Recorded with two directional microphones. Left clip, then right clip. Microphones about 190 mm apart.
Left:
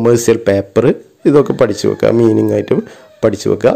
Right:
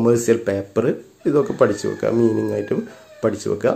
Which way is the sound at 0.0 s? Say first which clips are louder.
Left 6 dB; 45° left (ahead or behind).